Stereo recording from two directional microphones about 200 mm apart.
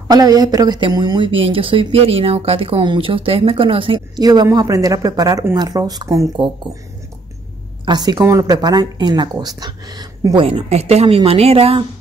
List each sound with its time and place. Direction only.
0.1 s speech: 20° right (ahead or behind)
7.8 s speech: 20° right (ahead or behind)